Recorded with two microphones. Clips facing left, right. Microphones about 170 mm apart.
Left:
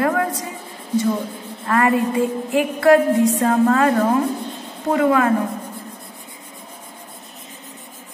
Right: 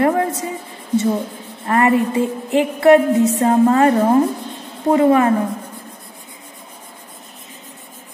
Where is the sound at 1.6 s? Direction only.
25° right (ahead or behind).